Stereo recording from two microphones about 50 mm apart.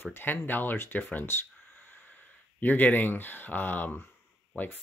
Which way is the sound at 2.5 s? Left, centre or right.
Left.